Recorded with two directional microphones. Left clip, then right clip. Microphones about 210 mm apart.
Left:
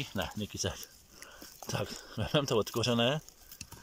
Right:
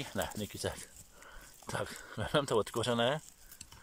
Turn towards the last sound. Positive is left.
turn(degrees=0)  # may be behind; listen again after turning